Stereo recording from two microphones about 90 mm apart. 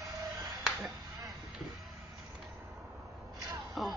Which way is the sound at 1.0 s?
50° right (ahead or behind).